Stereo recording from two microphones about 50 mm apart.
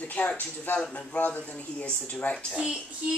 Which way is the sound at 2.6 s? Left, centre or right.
Centre.